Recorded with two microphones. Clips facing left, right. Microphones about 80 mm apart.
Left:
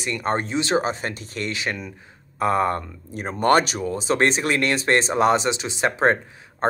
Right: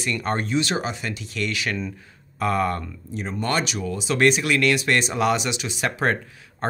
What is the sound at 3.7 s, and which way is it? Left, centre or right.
Speech, left.